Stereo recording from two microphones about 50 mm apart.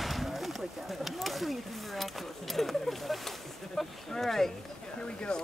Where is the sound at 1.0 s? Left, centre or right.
Centre.